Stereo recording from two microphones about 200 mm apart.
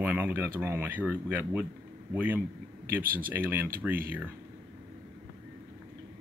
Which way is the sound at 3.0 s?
45° right (ahead or behind).